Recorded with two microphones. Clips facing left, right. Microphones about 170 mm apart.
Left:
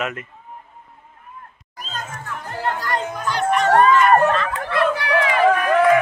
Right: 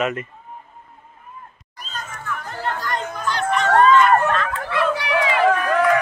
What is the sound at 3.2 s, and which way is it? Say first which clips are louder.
Music: left 2 dB; 10° left (ahead or behind).